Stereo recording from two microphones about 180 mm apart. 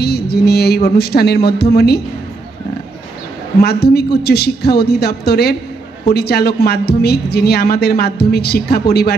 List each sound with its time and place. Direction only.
0.0 s a woman's voice: 65° left (ahead or behind)
3.6 s a woman's voice: 65° left (ahead or behind)